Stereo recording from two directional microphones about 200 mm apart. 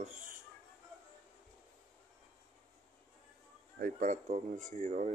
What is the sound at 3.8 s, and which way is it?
Speech, 40° right (ahead or behind).